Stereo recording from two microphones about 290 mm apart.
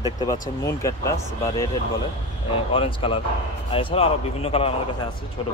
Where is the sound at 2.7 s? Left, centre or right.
Centre.